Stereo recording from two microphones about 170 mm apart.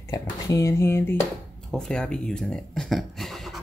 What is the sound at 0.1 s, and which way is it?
Speech, 20° left (ahead or behind).